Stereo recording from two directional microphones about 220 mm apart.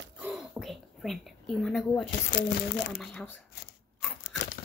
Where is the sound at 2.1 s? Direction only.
55° left (ahead or behind).